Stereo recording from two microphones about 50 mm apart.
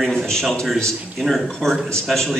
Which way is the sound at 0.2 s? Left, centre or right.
Centre.